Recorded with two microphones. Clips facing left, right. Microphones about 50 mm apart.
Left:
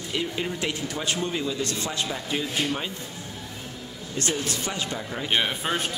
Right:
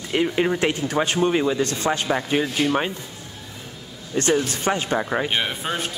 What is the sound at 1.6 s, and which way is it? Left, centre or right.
Speech, right.